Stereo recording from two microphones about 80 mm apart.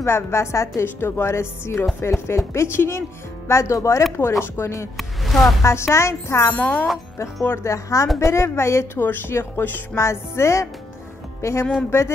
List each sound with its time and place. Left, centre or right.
0.0 s a woman's voice: left
4.9 s speech: centre
5.6 s a woman's voice: left
6.5 s speech: centre
7.7 s a woman's voice: left